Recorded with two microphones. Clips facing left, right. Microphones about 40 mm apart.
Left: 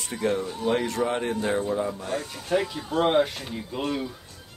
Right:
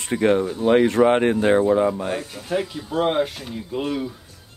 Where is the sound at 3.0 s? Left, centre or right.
Centre.